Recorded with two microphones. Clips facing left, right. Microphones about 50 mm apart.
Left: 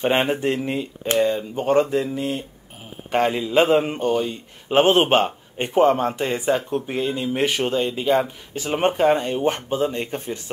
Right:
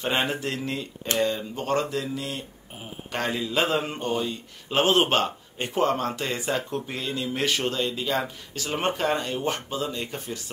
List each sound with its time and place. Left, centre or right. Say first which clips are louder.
0.0 s speech: left 6 dB; left